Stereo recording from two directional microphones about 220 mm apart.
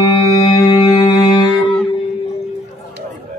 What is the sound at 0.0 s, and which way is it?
Music, 15° left (ahead or behind).